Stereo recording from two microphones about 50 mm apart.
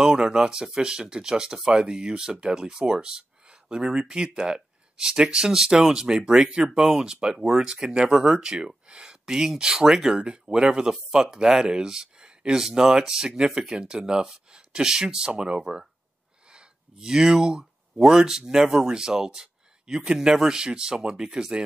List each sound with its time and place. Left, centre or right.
0.0 s speech: centre